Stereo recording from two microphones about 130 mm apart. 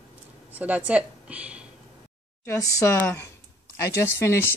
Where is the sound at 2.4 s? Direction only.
25° left (ahead or behind).